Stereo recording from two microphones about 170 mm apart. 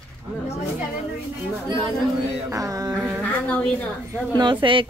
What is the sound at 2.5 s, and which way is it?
Speech, 20° right (ahead or behind).